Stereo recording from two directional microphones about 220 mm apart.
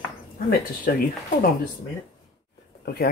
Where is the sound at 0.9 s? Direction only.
45° left (ahead or behind).